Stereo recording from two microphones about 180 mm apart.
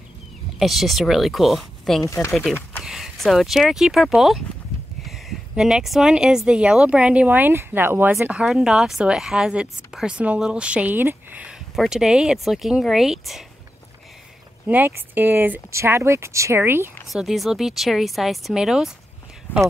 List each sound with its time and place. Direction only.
0.6 s speech: centre (ahead or behind)
2.0 s speech: 15° left (ahead or behind)
2.8 s speech: centre (ahead or behind)
5.6 s speech: 5° right (ahead or behind)
14.7 s speech: 10° right (ahead or behind)
17.1 s speech: centre (ahead or behind)